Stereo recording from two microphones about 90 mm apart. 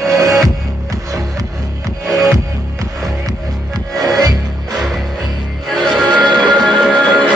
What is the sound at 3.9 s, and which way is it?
Music, 45° right (ahead or behind).